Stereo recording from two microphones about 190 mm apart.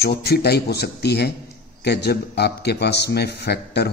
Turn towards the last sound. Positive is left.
turn(degrees=60)  # may be behind; listen again after turning